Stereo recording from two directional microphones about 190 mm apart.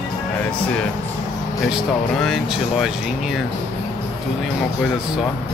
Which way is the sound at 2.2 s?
Centre (ahead or behind).